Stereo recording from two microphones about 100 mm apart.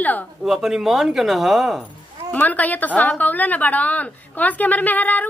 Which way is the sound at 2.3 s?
15° left (ahead or behind).